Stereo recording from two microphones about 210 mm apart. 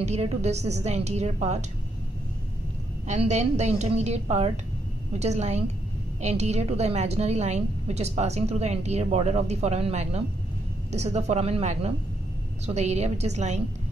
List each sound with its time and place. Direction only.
0.0 s a woman's voice: 30° right (ahead or behind)
3.1 s a woman's voice: 35° right (ahead or behind)